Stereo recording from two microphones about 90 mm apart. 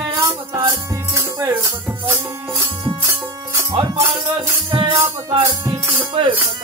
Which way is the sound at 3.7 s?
60° right (ahead or behind).